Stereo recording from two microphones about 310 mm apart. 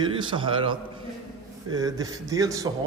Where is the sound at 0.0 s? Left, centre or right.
Centre.